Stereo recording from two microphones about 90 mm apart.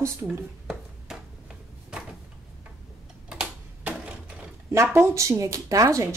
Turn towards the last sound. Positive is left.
turn(degrees=-35)  # may be behind; listen again after turning